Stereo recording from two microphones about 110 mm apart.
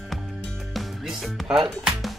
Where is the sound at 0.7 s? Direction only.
Centre (ahead or behind).